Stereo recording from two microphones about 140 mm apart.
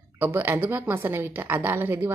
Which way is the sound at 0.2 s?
15° right (ahead or behind).